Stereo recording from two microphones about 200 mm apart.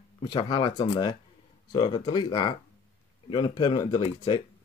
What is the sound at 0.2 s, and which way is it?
Speech, 20° left (ahead or behind).